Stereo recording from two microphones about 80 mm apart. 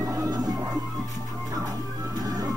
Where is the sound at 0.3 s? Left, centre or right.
Right.